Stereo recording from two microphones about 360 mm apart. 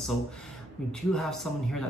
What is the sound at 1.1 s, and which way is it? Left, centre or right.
Speech, centre.